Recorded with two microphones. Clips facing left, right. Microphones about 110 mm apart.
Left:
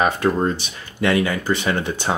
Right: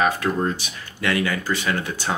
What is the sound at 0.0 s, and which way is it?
Speech, 30° left (ahead or behind).